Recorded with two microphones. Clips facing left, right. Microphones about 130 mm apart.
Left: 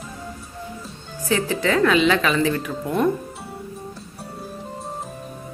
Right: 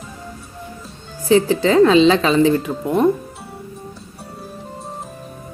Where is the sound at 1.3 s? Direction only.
30° right (ahead or behind).